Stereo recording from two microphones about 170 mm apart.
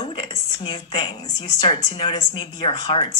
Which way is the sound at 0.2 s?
25° left (ahead or behind).